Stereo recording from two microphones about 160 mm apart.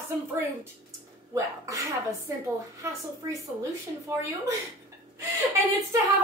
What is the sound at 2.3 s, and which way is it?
Speech, 20° right (ahead or behind).